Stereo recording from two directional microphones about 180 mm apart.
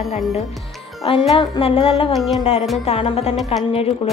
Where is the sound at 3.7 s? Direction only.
35° left (ahead or behind).